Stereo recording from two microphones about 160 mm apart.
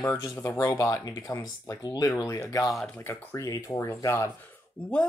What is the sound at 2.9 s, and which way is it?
Speech, 15° left (ahead or behind).